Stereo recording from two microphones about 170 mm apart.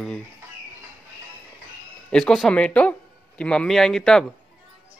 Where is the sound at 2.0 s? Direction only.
5° left (ahead or behind).